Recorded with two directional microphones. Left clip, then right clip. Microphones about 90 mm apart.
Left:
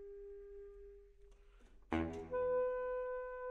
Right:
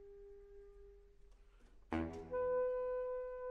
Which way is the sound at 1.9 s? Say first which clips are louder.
Left 2 dB; 30° left (ahead or behind).